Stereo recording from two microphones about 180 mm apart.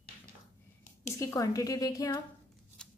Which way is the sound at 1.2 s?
20° left (ahead or behind).